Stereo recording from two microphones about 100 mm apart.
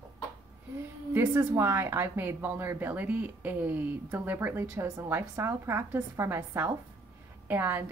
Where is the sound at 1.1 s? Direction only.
25° right (ahead or behind).